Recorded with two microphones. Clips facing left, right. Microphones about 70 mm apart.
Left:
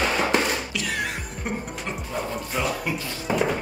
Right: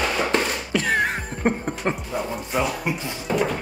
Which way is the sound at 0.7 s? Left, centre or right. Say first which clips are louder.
Right 7 dB; right.